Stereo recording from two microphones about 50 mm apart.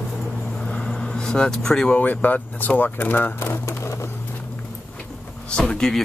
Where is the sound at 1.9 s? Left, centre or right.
Left.